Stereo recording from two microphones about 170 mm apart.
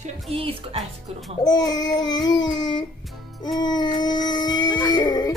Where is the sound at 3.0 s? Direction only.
Centre (ahead or behind).